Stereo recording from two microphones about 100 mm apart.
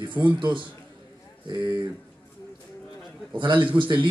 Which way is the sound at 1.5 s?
40° right (ahead or behind).